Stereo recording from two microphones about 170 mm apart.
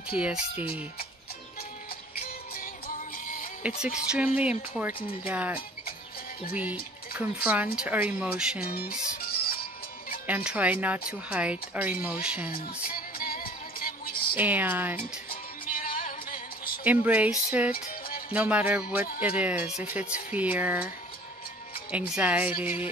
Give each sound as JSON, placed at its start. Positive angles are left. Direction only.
{"t": 0.2, "sound": "speech", "side_deg": -10}
{"t": 3.6, "sound": "speech", "side_deg": -5}
{"t": 8.6, "sound": "music", "side_deg": 60}
{"t": 10.2, "sound": "speech", "side_deg": -10}
{"t": 12.4, "sound": "music", "side_deg": 60}
{"t": 14.3, "sound": "speech", "side_deg": -10}
{"t": 15.2, "sound": "music", "side_deg": 55}
{"t": 16.8, "sound": "speech", "side_deg": -10}
{"t": 17.8, "sound": "music", "side_deg": 60}
{"t": 18.3, "sound": "speech", "side_deg": -10}
{"t": 21.9, "sound": "speech", "side_deg": -10}